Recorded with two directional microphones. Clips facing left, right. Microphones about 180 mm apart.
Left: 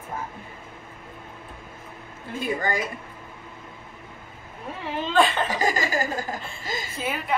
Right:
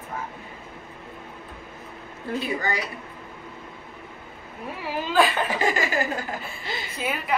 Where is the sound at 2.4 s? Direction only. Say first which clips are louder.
Left 2 dB; 50° left (ahead or behind).